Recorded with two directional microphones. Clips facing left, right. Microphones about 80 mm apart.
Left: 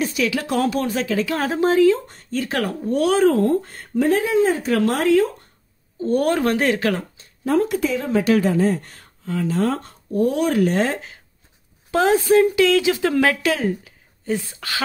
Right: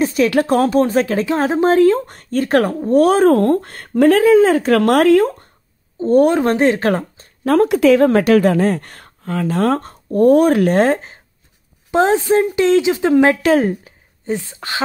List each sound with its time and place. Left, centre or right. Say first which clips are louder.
0.0 s a sound: right 6 dB; right
0.4 s speech: right 10 dB; right
1.2 s speech: right 5 dB; right
5.9 s a woman's voice: right 7 dB; right
6.8 s speech: right 5 dB; right
7.4 s speech: right 8 dB; right
11.9 s a woman's voice: right 2 dB; right
13.6 s a woman's voice: right 6 dB; right
14.2 s a woman's voice: right 2 dB; right